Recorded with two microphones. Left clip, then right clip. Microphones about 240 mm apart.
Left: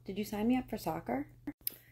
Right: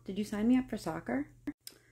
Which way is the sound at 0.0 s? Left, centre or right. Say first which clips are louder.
Right 1 dB; centre.